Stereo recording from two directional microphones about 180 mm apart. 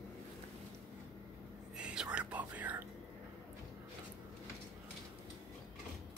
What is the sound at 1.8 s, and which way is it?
Whispering, 5° right (ahead or behind).